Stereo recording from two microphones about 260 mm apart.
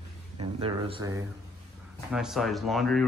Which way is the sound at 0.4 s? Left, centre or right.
Right.